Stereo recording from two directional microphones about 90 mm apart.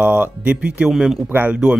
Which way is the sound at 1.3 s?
20° right (ahead or behind).